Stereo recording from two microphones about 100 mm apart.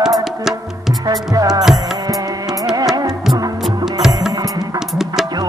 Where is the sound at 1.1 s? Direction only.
40° right (ahead or behind).